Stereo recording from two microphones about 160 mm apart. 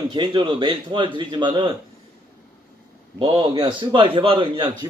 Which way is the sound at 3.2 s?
30° right (ahead or behind).